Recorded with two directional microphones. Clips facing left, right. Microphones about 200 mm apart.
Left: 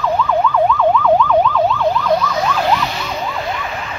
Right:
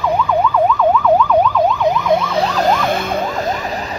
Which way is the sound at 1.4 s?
15° right (ahead or behind).